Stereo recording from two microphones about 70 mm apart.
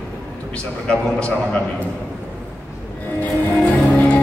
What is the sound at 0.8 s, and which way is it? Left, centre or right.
Speech, centre.